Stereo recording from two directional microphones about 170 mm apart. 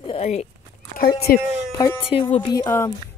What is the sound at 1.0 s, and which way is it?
Speech, 65° left (ahead or behind).